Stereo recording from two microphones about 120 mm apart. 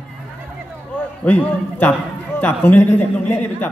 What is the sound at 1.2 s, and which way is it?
A man's voice, 15° left (ahead or behind).